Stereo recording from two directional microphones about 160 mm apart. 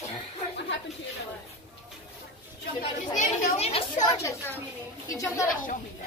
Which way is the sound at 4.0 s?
20° left (ahead or behind).